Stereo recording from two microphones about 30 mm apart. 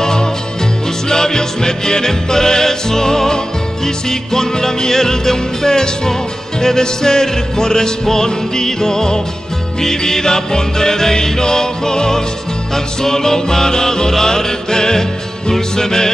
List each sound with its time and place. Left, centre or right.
0.0 s music: left